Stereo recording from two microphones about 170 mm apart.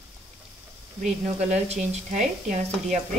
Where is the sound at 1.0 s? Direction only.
40° right (ahead or behind).